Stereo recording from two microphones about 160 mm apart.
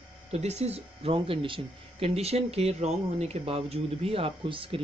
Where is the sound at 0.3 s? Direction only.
40° right (ahead or behind).